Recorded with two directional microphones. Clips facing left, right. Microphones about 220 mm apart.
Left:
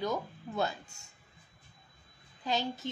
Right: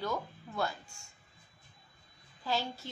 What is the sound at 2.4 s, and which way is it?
Speech, 20° left (ahead or behind).